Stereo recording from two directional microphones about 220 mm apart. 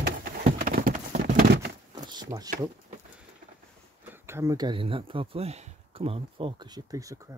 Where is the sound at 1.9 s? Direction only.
20° right (ahead or behind).